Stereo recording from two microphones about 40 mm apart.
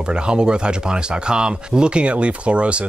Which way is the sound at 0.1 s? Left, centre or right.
Right.